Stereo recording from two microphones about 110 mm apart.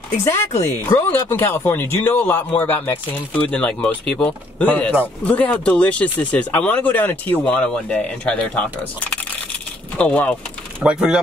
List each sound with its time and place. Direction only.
0.2 s speech: 25° left (ahead or behind)
9.9 s speech: 10° left (ahead or behind)
10.8 s speech: 10° right (ahead or behind)